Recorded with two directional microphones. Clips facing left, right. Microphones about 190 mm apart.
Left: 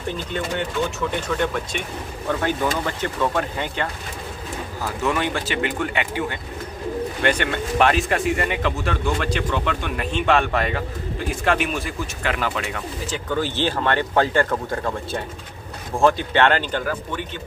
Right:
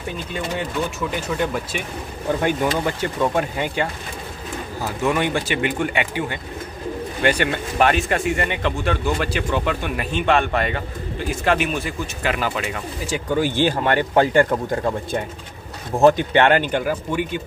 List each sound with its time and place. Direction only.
1.1 s speech: 5° right (ahead or behind)
5.0 s speech: 15° right (ahead or behind)